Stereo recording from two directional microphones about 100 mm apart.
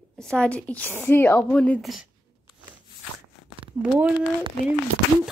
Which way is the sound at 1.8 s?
Centre (ahead or behind).